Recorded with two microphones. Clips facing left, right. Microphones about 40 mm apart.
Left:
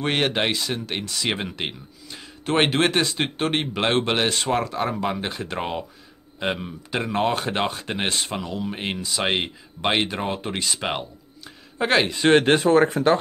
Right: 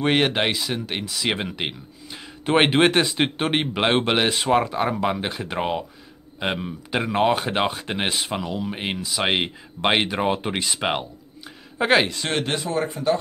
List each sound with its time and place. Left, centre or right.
0.0 s speech: centre
12.2 s speech: left
12.6 s speech: left